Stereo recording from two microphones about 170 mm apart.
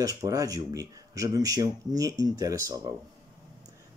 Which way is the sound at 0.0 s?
20° right (ahead or behind).